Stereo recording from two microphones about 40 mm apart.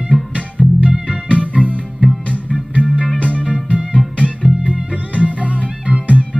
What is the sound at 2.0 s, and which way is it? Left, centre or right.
Music, right.